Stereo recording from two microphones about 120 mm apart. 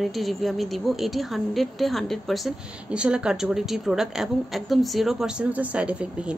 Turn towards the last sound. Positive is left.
turn(degrees=-10)  # may be behind; listen again after turning